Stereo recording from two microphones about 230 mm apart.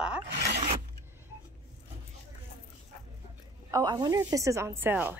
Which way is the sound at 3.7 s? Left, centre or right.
Centre.